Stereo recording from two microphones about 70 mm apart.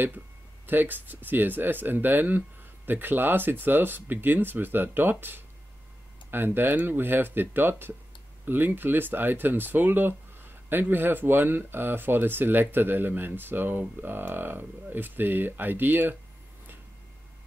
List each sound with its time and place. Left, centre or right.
0.7 s speech: right
6.3 s speech: right